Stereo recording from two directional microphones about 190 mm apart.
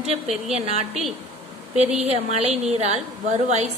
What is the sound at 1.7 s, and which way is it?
A woman's voice, 35° right (ahead or behind).